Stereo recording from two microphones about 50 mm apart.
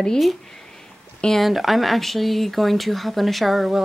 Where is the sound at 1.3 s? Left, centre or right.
Centre.